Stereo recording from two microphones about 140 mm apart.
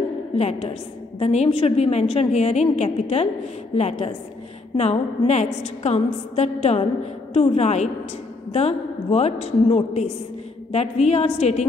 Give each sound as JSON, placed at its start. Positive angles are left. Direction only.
{"t": 0.4, "sound": "a woman's voice", "side_deg": 50}